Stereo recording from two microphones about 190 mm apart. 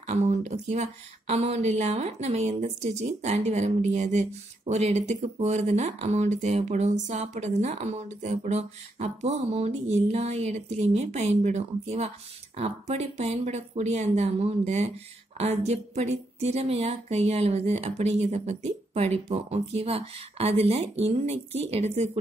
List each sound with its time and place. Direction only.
0.0 s speech: 35° right (ahead or behind)